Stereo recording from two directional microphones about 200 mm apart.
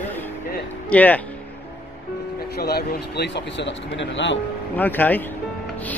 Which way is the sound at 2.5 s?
50° left (ahead or behind).